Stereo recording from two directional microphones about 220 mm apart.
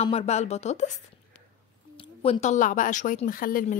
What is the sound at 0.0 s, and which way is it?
Speech, 30° left (ahead or behind).